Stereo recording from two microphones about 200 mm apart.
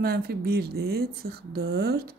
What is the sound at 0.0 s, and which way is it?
Speech, 50° right (ahead or behind).